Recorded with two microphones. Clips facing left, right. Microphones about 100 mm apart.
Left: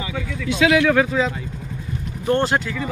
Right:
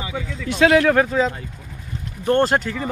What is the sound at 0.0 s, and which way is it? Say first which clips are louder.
Speech: left 1 dB; 20° right (ahead or behind).